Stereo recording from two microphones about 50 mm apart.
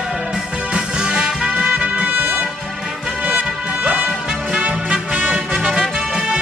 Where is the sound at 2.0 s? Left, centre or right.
Right.